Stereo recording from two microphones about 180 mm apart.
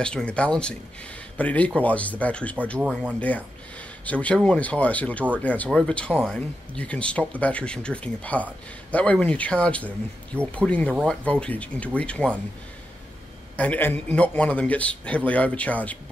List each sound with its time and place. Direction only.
0.0 s a man's voice: 5° left (ahead or behind)
2.8 s speech: 5° right (ahead or behind)
3.2 s a man's voice: 10° left (ahead or behind)
13.6 s a man's voice: 10° left (ahead or behind)